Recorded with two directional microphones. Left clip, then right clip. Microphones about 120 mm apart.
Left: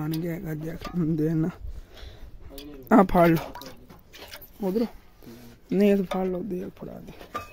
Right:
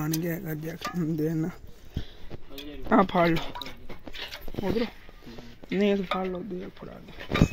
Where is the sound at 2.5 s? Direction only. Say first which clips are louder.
Left 3 dB; 90° left.